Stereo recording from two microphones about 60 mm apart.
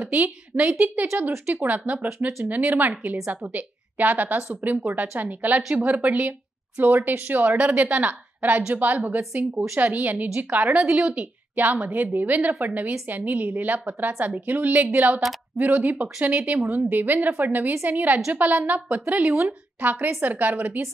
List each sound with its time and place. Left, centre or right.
0.1 s a woman's voice: right
10.7 s speech: centre
11.1 s a woman's voice: right